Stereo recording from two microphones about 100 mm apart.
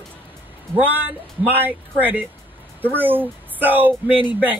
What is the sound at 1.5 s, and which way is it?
Speech, 20° right (ahead or behind).